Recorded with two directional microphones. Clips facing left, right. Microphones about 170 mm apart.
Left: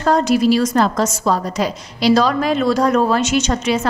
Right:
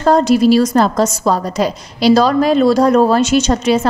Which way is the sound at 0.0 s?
30° right (ahead or behind).